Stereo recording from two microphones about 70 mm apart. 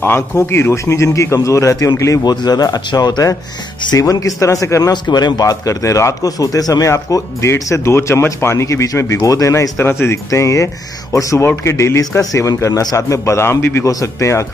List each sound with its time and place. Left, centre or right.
0.0 s speech: left
2.2 s a man's voice: left
4.1 s speech: left
5.0 s speech: left
9.8 s speech: left
12.0 s speech: left
13.8 s speech: left